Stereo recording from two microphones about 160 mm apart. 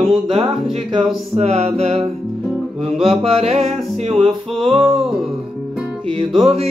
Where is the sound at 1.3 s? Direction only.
45° right (ahead or behind).